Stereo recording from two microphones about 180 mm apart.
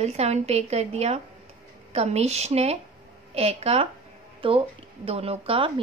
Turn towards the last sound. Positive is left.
turn(degrees=-30)  # may be behind; listen again after turning